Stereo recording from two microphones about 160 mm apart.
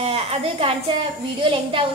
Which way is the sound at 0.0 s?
40° right (ahead or behind).